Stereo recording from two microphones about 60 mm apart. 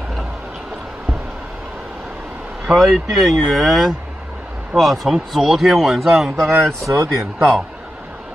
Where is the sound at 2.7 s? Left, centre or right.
Centre.